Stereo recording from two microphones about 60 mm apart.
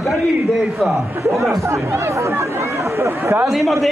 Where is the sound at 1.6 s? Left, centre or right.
Right.